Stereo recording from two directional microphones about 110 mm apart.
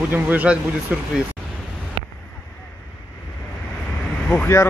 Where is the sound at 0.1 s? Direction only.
15° right (ahead or behind).